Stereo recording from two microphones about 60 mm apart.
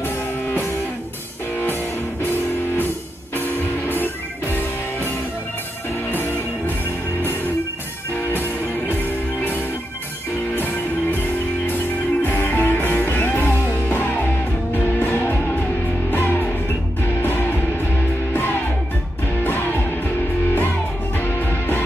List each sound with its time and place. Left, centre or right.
2.2 s music: left
8.2 s music: left
10.5 s music: left
19.4 s music: left
21.2 s music: left